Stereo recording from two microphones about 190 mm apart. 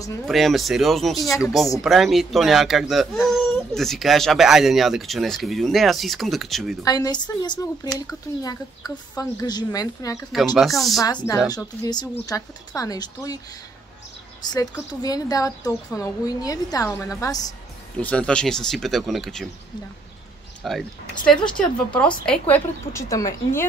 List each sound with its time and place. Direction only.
0.3 s speech: centre (ahead or behind)
6.8 s speech: 20° left (ahead or behind)
10.3 s speech: centre (ahead or behind)
11.0 s speech: 20° left (ahead or behind)
14.4 s speech: 20° left (ahead or behind)
17.9 s speech: 5° left (ahead or behind)
20.6 s speech: centre (ahead or behind)